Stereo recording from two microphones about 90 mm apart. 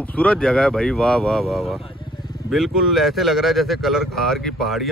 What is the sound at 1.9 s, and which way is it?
Vehicle, 70° left (ahead or behind).